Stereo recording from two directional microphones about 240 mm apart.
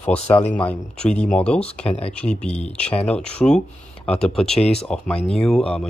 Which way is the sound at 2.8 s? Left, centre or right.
Centre.